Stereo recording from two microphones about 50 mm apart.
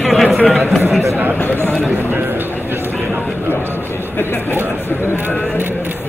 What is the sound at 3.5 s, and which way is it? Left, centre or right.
Speech, left.